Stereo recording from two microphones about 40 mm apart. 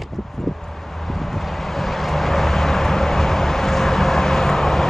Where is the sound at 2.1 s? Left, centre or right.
Centre.